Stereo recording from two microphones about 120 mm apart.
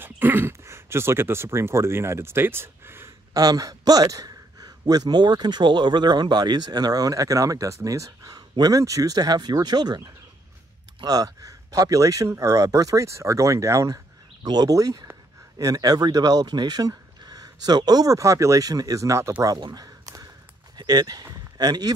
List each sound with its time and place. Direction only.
0.0 s speech: 15° right (ahead or behind)
3.4 s a man's voice: 30° right (ahead or behind)
19.4 s a sound: 35° right (ahead or behind)
20.7 s speech: 35° right (ahead or behind)